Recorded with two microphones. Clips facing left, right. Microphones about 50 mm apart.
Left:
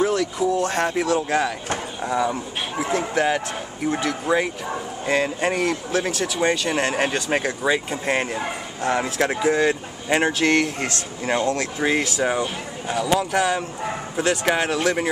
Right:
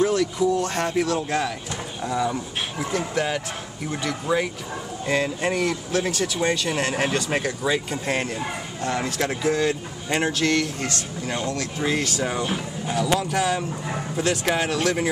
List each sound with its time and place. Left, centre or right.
0.0 s speech: centre
5.0 s speech: centre
10.5 s speech: left
12.1 s speech: centre
12.4 s speech: centre